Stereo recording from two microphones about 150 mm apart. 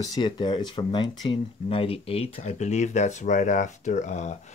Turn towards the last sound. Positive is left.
turn(degrees=50)  # may be behind; listen again after turning